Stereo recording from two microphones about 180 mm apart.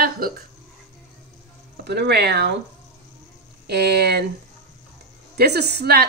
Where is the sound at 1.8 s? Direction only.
65° right (ahead or behind).